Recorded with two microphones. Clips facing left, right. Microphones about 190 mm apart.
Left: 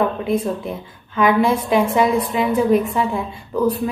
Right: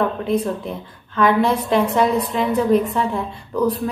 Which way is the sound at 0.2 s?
10° left (ahead or behind).